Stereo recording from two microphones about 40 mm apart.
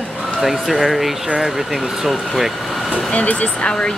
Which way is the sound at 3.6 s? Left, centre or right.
Left.